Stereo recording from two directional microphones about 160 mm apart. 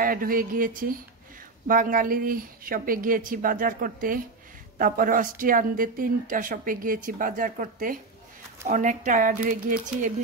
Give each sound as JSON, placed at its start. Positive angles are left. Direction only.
{"t": 0.0, "sound": "speech", "side_deg": -65}